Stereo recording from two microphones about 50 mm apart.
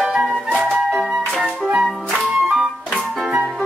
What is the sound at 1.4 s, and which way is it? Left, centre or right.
Music, centre.